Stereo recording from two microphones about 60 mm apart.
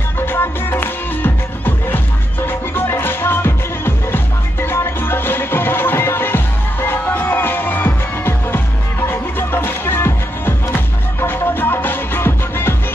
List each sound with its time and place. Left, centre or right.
0.2 s music: left
2.4 s music: left